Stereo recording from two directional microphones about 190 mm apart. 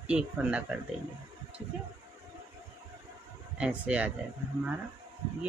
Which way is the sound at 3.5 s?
5° right (ahead or behind).